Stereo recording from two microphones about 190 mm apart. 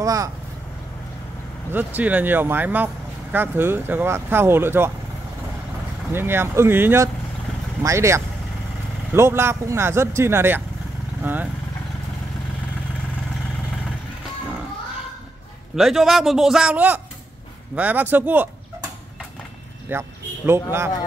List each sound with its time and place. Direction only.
0.0 s speech: 15° right (ahead or behind)
1.7 s speech: 10° right (ahead or behind)
6.1 s speech: 10° right (ahead or behind)
15.7 s a man's voice: centre (ahead or behind)
19.9 s speech: 15° right (ahead or behind)